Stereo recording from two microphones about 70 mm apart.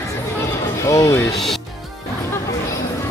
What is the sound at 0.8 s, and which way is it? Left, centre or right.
Speech, left.